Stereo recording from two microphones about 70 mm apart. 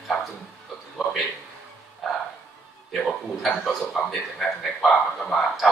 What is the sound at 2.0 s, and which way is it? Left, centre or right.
Music, centre.